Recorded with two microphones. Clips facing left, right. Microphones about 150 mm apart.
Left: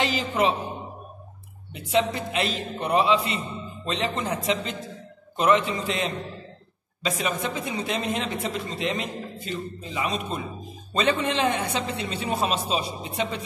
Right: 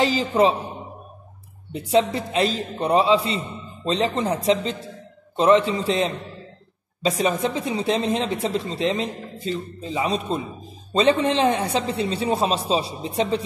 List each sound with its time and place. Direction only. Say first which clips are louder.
0.0 s a man's voice: right 5 dB; 35° right (ahead or behind)
1.7 s a woman's voice: right 4 dB; 35° right (ahead or behind)